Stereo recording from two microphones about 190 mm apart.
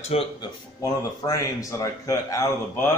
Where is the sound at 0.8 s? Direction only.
20° left (ahead or behind).